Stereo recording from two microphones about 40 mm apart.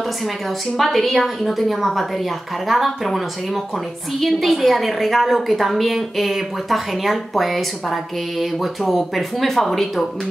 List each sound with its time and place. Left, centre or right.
0.7 s a woman's voice: centre